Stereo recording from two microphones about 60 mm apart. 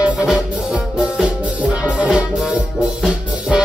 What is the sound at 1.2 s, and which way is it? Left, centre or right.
Music, centre.